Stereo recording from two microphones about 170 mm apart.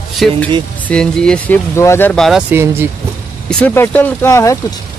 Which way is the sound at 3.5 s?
10° left (ahead or behind).